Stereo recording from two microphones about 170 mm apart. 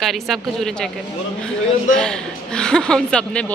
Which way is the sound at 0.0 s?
Centre (ahead or behind).